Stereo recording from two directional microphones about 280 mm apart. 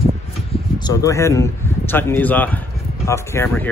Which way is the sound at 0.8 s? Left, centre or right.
Centre.